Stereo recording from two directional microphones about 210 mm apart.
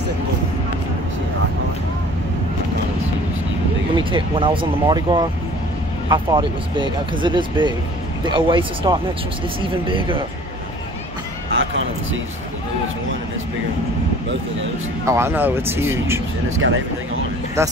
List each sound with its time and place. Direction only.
3.9 s speech: 25° right (ahead or behind)
15.0 s speech: 10° right (ahead or behind)
16.4 s speech: 70° right (ahead or behind)
17.6 s speech: 15° right (ahead or behind)